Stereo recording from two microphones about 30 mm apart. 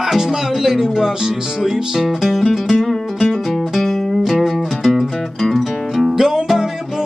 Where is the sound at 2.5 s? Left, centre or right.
Centre.